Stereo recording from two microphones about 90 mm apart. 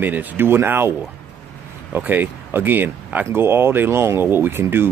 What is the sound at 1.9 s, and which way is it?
Speech, 20° right (ahead or behind).